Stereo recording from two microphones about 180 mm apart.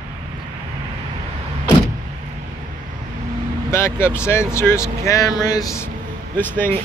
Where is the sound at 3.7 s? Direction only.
15° left (ahead or behind).